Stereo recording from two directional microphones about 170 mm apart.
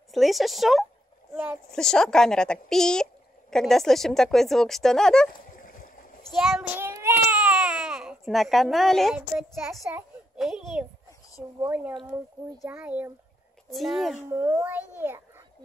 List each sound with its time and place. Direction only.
0.1 s a child's voice: centre (ahead or behind)
1.7 s speech: 5° left (ahead or behind)
5.6 s boat: 50° left (ahead or behind)
6.5 s baby cry: 10° right (ahead or behind)
9.8 s a child's voice: 5° right (ahead or behind)
13.7 s speech: centre (ahead or behind)
14.3 s a child's voice: 15° right (ahead or behind)